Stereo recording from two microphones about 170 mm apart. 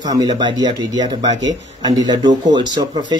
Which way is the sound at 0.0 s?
20° right (ahead or behind).